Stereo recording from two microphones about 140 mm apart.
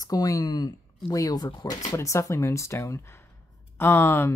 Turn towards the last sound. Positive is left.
turn(degrees=15)  # may be behind; listen again after turning